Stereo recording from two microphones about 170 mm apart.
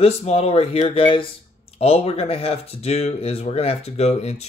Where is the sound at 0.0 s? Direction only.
35° left (ahead or behind).